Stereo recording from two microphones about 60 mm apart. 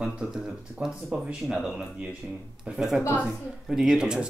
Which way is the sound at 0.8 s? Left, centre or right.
Centre.